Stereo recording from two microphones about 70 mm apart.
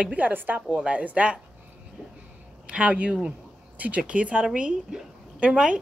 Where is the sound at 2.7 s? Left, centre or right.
Centre.